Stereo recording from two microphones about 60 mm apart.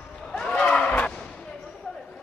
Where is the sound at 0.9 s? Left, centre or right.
Left.